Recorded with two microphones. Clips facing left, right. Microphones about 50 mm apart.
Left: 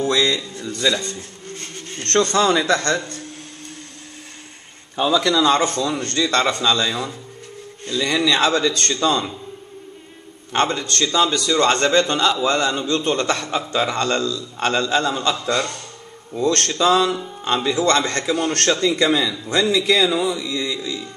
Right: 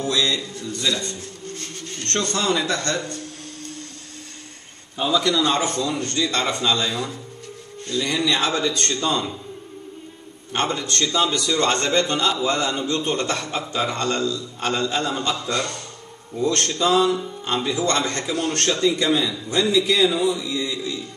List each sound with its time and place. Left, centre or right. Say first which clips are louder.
0.1 s a man's voice: left 3 dB; left
2.3 s a man's voice: left 4 dB; left
2.6 s a man's voice: left 5 dB; left
4.9 s a man's voice: left 3 dB; left
5.7 s a man's voice: left 2 dB; left
10.5 s a man's voice: left 3 dB; left
16.3 s a man's voice: left 3 dB; left